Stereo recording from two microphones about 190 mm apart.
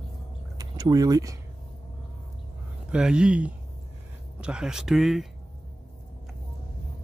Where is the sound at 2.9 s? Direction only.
5° right (ahead or behind).